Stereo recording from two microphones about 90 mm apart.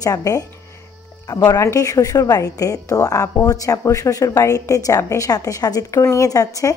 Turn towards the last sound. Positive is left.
turn(degrees=40)  # may be behind; listen again after turning